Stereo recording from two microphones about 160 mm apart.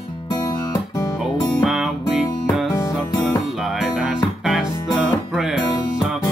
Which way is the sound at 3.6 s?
Centre (ahead or behind).